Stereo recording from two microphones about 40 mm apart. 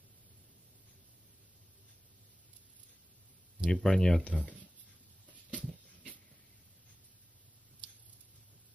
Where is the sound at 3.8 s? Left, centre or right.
Centre.